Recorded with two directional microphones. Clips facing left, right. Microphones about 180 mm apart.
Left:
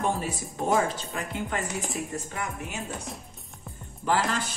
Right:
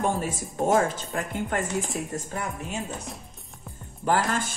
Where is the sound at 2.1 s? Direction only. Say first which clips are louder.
Right 2 dB; 35° right (ahead or behind).